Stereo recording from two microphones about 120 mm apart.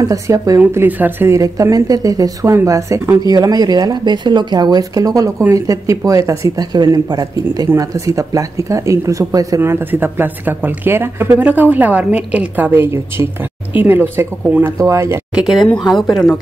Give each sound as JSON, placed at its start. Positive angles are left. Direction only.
{"t": 0.0, "sound": "speech", "side_deg": -30}
{"t": 0.6, "sound": "a woman's voice", "side_deg": -15}
{"t": 15.3, "sound": "speech", "side_deg": 0}